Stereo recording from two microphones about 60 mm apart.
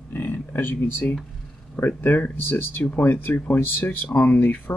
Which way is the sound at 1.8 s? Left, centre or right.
Left.